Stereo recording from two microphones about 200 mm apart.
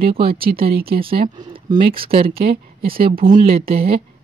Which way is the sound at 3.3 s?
30° right (ahead or behind).